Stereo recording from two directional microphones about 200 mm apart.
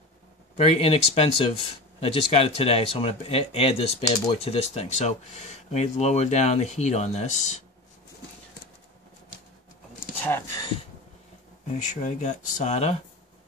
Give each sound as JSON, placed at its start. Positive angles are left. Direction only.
{"t": 0.6, "sound": "speech", "side_deg": 30}
{"t": 10.2, "sound": "a sound", "side_deg": 10}
{"t": 11.8, "sound": "speech", "side_deg": 35}